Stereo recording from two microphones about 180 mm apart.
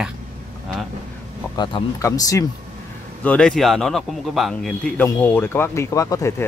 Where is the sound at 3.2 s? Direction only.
5° left (ahead or behind).